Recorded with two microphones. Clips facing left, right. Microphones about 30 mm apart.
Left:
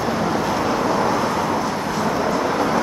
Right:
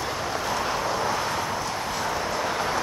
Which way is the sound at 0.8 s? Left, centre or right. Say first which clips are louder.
Left 7 dB; left.